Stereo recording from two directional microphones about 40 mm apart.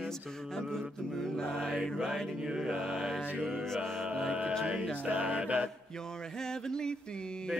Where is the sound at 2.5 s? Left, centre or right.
Centre.